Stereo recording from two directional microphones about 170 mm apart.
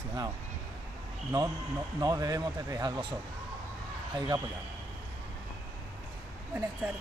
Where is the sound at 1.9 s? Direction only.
20° right (ahead or behind).